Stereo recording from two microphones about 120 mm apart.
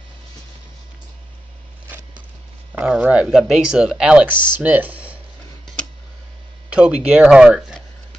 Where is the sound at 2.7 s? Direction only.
10° right (ahead or behind).